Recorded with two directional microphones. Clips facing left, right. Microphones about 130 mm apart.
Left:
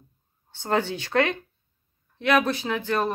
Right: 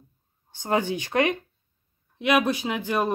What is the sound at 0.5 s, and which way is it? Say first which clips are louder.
Speech: even; 15° right (ahead or behind).